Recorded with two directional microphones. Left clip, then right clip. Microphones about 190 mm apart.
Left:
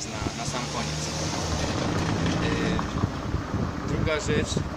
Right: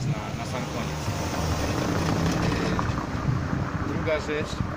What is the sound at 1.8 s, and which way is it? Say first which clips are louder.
Vehicle: right 1 dB; 35° right (ahead or behind).